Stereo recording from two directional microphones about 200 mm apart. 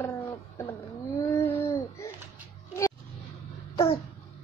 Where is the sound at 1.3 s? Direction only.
15° left (ahead or behind).